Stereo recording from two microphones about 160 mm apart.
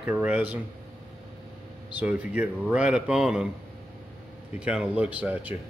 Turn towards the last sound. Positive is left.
turn(degrees=-10)  # may be behind; listen again after turning